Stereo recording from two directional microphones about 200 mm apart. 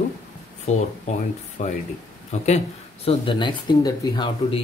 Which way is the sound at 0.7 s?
35° left (ahead or behind).